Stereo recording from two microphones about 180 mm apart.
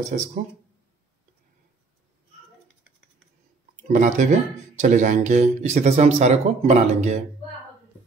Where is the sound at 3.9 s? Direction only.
45° right (ahead or behind).